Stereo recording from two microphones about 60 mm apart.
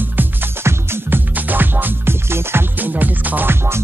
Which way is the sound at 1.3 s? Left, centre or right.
Right.